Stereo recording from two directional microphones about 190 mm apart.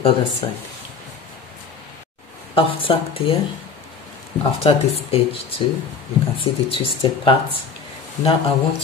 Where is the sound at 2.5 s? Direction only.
30° left (ahead or behind).